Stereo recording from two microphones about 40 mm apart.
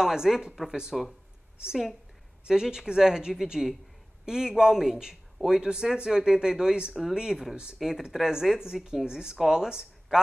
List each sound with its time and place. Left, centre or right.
0.0 s a woman's voice: centre
0.9 s speech: centre
2.4 s a woman's voice: centre
6.9 s speech: centre
7.2 s a woman's voice: centre